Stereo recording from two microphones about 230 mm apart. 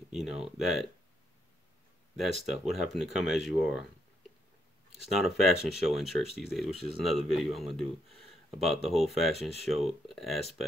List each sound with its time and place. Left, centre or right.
0.1 s speech: centre
2.1 s speech: centre
5.2 s speech: centre